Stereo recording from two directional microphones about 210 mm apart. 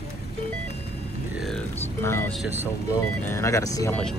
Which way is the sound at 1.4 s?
5° left (ahead or behind).